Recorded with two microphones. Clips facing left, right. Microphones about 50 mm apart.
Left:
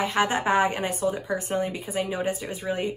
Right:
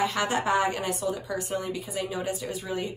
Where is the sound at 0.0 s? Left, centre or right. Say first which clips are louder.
Left 2 dB; left.